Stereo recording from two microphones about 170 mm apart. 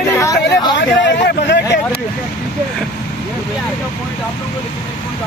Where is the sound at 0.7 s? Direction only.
90° left.